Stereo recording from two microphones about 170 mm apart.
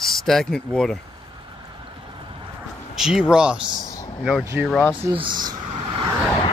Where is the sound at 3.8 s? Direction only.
20° left (ahead or behind).